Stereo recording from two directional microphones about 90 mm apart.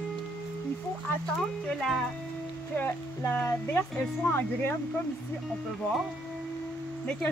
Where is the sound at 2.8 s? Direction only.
30° left (ahead or behind).